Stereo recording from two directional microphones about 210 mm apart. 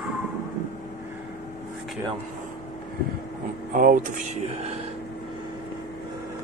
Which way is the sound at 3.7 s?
40° right (ahead or behind).